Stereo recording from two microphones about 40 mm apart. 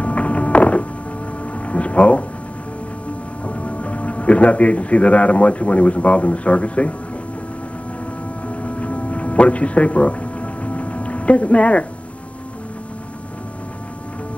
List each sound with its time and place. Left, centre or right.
0.0 s a sound: left
3.4 s speech: left
8.5 s music: left